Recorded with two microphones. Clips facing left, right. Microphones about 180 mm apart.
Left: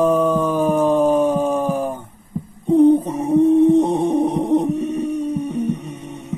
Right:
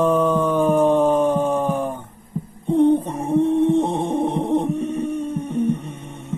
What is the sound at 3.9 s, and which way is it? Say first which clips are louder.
Music: left 4 dB; 35° left (ahead or behind).